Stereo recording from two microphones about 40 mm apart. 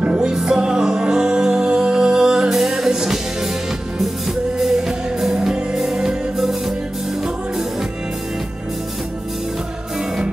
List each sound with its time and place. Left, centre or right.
0.0 s music: right
0.3 s music: centre
2.5 s music: centre
4.6 s music: centre